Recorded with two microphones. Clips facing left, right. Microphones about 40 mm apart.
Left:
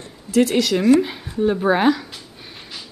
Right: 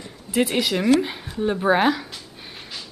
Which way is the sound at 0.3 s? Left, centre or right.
Centre.